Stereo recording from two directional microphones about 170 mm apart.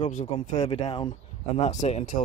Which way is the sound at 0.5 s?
20° left (ahead or behind).